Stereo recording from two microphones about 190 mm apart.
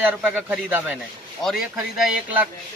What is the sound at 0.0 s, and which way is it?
Speech, 10° right (ahead or behind).